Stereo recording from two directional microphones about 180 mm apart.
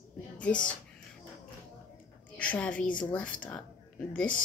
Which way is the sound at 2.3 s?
10° left (ahead or behind).